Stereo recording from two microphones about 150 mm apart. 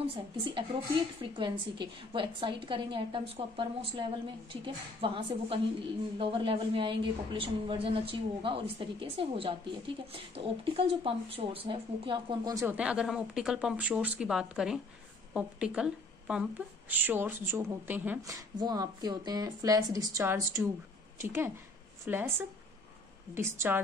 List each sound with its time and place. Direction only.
0.0 s a woman's voice: 40° right (ahead or behind)
5.0 s a woman's voice: 35° right (ahead or behind)
12.7 s a woman's voice: 5° right (ahead or behind)
18.3 s a woman's voice: 25° right (ahead or behind)